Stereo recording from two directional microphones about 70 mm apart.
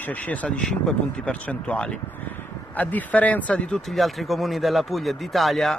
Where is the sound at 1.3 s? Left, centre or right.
Left.